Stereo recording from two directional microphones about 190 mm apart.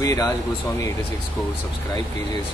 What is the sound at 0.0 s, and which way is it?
Speech, 15° left (ahead or behind).